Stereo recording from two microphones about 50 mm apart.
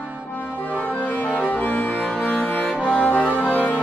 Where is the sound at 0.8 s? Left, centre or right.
Left.